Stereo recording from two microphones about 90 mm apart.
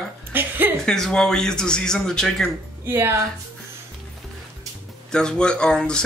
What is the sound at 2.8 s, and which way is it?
Speech, 25° right (ahead or behind).